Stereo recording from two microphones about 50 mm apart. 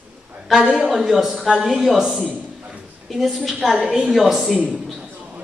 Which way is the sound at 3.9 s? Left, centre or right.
Centre.